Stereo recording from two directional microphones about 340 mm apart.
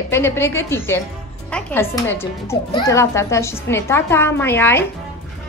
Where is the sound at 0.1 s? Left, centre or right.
Centre.